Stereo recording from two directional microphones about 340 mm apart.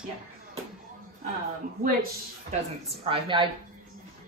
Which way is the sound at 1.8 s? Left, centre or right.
Right.